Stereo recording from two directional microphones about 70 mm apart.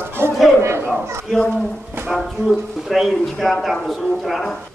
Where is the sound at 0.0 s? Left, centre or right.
Right.